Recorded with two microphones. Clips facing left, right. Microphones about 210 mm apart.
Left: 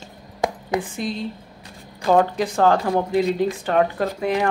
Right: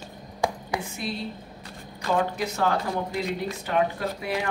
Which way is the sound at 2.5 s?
50° left (ahead or behind).